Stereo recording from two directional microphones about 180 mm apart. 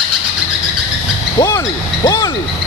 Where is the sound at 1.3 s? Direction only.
20° left (ahead or behind).